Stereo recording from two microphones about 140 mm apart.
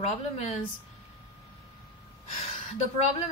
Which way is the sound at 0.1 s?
50° left (ahead or behind).